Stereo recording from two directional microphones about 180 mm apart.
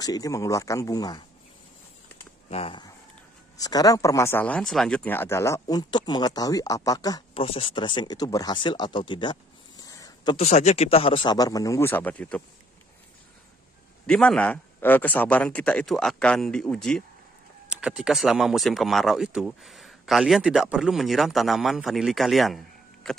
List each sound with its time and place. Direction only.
0.0 s speech: 20° left (ahead or behind)
2.5 s speech: 30° left (ahead or behind)
7.3 s speech: 30° left (ahead or behind)
10.3 s speech: 40° left (ahead or behind); by 12.4 s 5° left (ahead or behind)
14.0 s speech: 5° left (ahead or behind)